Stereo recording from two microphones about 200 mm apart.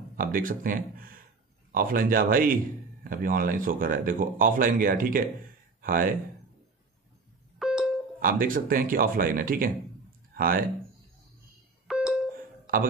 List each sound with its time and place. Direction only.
0.1 s speech: 45° right (ahead or behind)
7.5 s music: 5° right (ahead or behind)
8.2 s speech: 45° right (ahead or behind)
11.9 s a sound: 5° right (ahead or behind)